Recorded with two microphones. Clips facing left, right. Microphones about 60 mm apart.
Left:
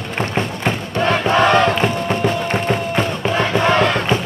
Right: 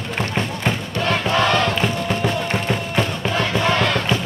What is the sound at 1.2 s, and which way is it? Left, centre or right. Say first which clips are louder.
Music: left 5 dB; left.